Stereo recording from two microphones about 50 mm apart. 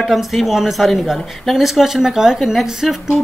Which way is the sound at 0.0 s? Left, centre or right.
Centre.